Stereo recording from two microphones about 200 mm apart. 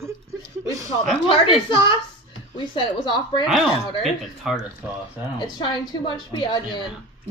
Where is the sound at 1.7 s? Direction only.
25° left (ahead or behind).